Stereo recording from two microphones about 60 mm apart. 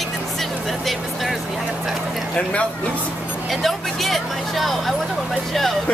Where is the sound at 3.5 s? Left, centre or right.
Centre.